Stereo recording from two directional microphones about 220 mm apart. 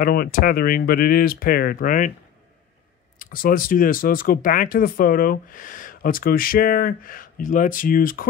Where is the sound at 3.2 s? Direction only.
40° left (ahead or behind).